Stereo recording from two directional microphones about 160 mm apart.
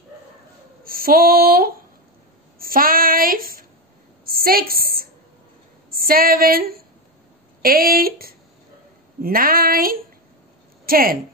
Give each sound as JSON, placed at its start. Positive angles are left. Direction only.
{"t": 0.8, "sound": "female singing", "side_deg": -65}
{"t": 2.6, "sound": "child singing", "side_deg": -65}
{"t": 4.3, "sound": "a sound", "side_deg": -70}
{"t": 7.6, "sound": "a woman's voice", "side_deg": -65}